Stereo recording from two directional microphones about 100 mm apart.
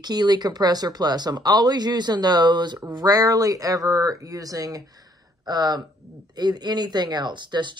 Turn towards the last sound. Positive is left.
turn(degrees=-50)  # may be behind; listen again after turning